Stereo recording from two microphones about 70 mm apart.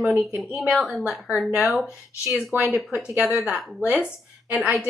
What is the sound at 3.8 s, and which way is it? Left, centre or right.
Speech, right.